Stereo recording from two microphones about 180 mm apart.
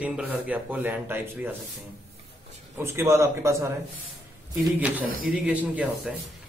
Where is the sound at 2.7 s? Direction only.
15° right (ahead or behind).